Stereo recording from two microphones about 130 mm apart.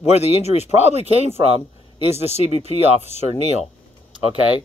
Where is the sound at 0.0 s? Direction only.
55° left (ahead or behind).